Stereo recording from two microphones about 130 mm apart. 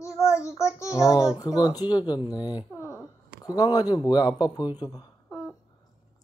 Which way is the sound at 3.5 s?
30° left (ahead or behind).